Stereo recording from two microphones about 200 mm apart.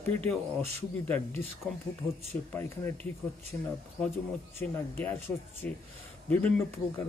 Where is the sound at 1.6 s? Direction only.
5° left (ahead or behind).